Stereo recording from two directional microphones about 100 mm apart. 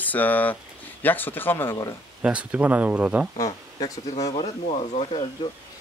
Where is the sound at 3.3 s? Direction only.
35° left (ahead or behind).